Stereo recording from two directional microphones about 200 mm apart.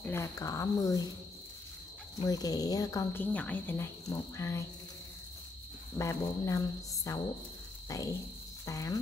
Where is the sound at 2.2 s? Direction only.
20° left (ahead or behind).